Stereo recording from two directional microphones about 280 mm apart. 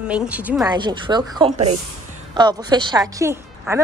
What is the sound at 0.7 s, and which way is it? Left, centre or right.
A woman's voice, centre.